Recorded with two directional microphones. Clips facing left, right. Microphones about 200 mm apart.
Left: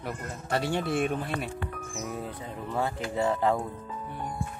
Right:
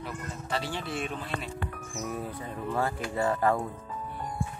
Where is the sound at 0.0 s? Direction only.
55° left (ahead or behind).